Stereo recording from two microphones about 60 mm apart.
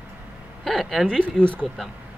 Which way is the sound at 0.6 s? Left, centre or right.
Centre.